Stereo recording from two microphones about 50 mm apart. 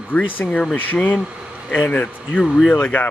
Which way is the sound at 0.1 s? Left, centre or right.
Left.